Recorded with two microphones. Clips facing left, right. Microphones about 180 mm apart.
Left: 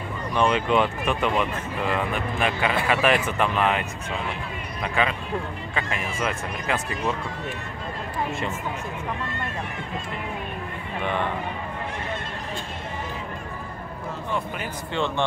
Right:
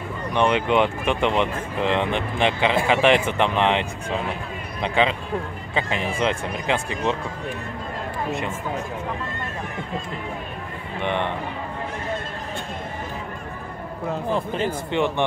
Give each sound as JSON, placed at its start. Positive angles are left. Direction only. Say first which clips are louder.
{"t": 0.4, "sound": "speech", "louder": "right 2 dB", "side_deg": -20}
{"t": 4.8, "sound": "speech", "louder": "right 4 dB", "side_deg": -20}
{"t": 11.0, "sound": "speech", "louder": "right 2 dB", "side_deg": -20}
{"t": 14.3, "sound": "speech", "louder": "right 5 dB", "side_deg": -30}
{"t": 14.9, "sound": "speech", "louder": "right 1 dB", "side_deg": -15}